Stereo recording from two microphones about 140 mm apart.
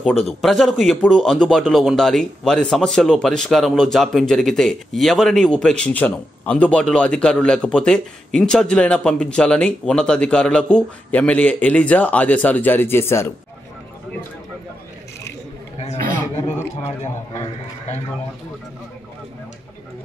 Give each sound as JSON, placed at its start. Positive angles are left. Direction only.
{"t": 0.0, "sound": "speech", "side_deg": 0}
{"t": 17.3, "sound": "a man's voice", "side_deg": 20}